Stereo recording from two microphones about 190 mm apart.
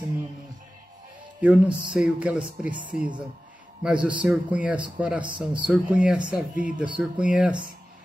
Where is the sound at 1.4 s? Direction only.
10° right (ahead or behind).